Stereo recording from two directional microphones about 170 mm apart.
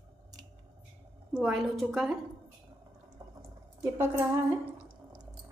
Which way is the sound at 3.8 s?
15° right (ahead or behind).